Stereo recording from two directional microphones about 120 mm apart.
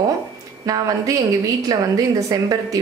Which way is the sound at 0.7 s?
30° right (ahead or behind).